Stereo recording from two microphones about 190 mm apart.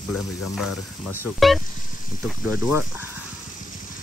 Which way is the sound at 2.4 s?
15° right (ahead or behind).